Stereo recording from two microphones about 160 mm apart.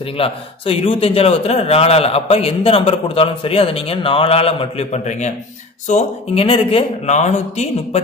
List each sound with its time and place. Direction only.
0.2 s a man's voice: 35° left (ahead or behind)
6.4 s speech: 35° left (ahead or behind)